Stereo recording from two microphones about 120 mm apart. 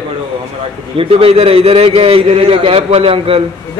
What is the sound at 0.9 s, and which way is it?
A man's voice, 50° right (ahead or behind).